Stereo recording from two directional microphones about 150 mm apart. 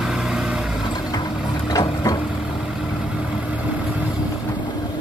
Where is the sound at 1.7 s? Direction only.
25° left (ahead or behind).